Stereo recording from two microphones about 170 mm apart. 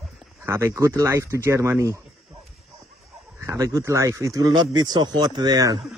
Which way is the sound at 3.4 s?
15° right (ahead or behind).